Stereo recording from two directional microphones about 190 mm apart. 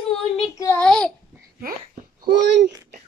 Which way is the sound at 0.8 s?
5° left (ahead or behind).